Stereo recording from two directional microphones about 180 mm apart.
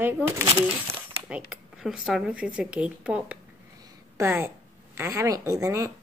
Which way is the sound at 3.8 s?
15° right (ahead or behind).